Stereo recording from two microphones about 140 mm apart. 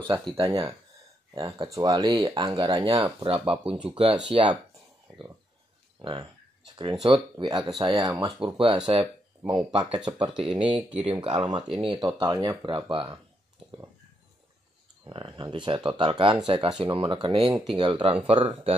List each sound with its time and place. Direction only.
0.3 s speech: 30° right (ahead or behind)
5.9 s speech: 30° right (ahead or behind)
10.8 s speech: 10° right (ahead or behind)
11.1 s speech: 35° right (ahead or behind)
15.0 s speech: 30° right (ahead or behind)